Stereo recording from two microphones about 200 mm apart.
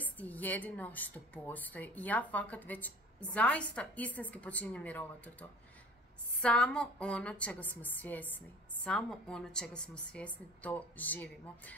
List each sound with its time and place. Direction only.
0.0 s a woman's voice: 10° left (ahead or behind)